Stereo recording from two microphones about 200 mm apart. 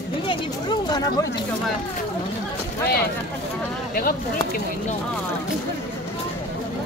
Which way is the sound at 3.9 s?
45° left (ahead or behind).